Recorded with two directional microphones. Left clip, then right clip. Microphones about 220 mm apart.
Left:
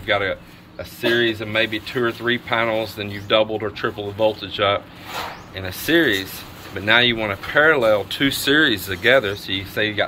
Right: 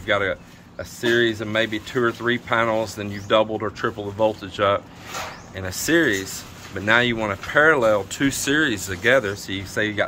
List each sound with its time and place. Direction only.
0.0 s speech: 20° right (ahead or behind)